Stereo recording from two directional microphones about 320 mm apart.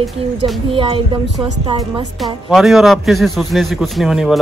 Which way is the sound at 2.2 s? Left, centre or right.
Centre.